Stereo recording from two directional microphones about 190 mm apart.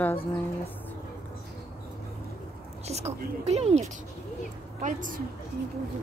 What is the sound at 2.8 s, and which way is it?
A woman's voice, 35° right (ahead or behind).